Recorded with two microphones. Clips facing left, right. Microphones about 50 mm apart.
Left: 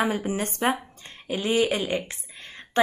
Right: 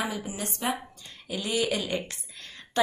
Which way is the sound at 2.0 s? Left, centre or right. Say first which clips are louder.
Left 3 dB; left.